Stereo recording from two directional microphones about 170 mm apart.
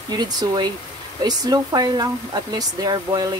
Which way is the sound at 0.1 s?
25° right (ahead or behind).